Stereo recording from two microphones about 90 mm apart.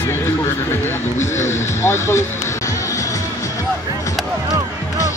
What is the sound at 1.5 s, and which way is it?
Music, 30° left (ahead or behind).